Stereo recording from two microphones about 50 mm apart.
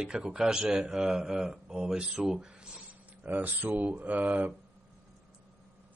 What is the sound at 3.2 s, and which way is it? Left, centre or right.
Speech, right.